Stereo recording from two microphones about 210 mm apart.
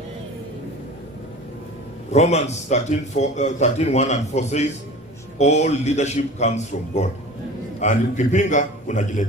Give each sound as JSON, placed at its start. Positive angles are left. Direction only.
{"t": 2.1, "sound": "a man's voice", "side_deg": 30}